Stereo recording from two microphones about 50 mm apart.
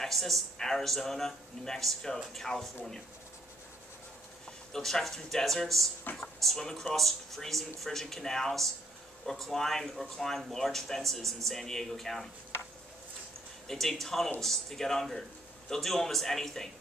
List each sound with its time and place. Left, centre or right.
0.0 s speech: centre
4.7 s speech: centre
6.1 s speech: left
6.4 s speech: centre
13.7 s speech: centre